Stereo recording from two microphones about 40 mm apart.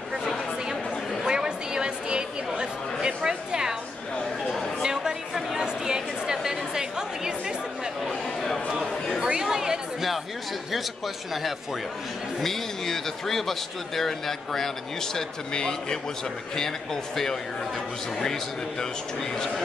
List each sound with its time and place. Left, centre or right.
1.2 s chatter: centre
4.8 s chatter: centre
8.1 s a sound: centre
9.2 s chatter: centre
12.4 s a man's voice: centre